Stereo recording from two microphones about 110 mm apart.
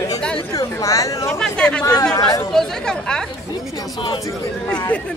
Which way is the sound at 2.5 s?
5° left (ahead or behind).